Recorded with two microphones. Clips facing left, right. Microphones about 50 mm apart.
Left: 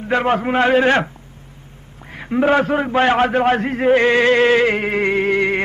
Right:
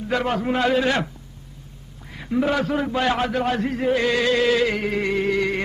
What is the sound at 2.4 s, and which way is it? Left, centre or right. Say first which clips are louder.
A man's voice: left 7 dB; left.